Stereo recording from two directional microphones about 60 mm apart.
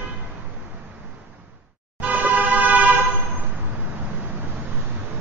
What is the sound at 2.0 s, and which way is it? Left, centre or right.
Vehicle, right.